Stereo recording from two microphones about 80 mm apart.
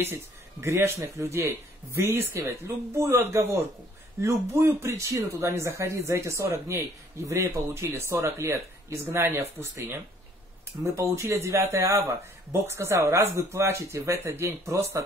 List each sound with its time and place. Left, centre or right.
0.0 s speech: right